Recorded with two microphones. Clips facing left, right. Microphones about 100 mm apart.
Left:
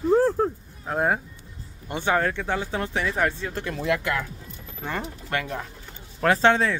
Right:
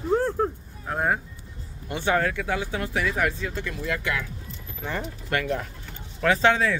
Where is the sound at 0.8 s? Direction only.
25° left (ahead or behind).